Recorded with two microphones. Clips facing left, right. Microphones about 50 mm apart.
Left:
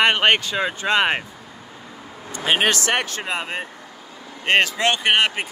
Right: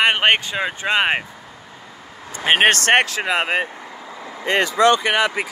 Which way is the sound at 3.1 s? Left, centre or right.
Right.